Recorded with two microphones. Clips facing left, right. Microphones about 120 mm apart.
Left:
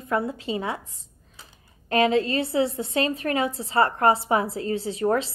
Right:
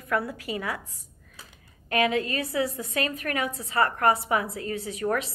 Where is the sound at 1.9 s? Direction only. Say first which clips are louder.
Left 4 dB; 30° left (ahead or behind).